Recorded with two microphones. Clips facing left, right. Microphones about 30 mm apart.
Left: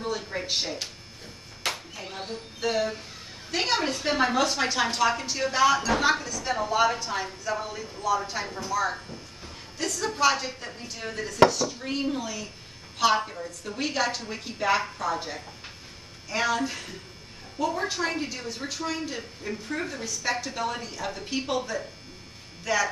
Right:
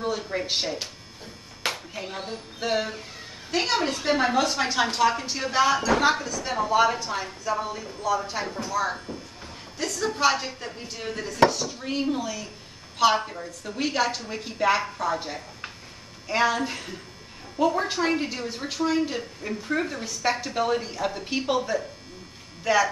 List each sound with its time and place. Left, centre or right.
0.1 s speech: centre
2.0 s speech: right
2.2 s a woman's voice: centre
3.5 s a woman's voice: centre
10.0 s a woman's voice: centre